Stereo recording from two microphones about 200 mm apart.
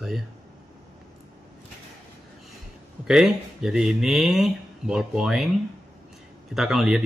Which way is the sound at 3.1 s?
Centre (ahead or behind).